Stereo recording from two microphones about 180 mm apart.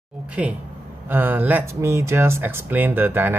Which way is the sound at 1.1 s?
10° right (ahead or behind).